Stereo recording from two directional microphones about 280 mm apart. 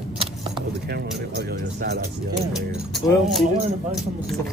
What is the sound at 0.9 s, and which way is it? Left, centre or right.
Speech, right.